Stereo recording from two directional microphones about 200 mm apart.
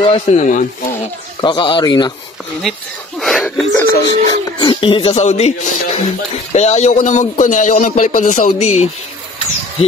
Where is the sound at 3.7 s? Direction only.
15° left (ahead or behind).